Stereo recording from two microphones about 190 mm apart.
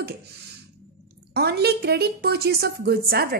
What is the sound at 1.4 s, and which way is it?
A woman's voice, 60° right (ahead or behind).